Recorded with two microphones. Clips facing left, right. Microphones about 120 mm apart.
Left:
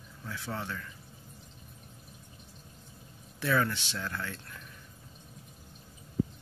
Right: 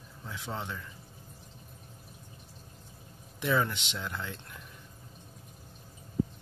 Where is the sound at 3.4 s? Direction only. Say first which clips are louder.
Even; 20° right (ahead or behind).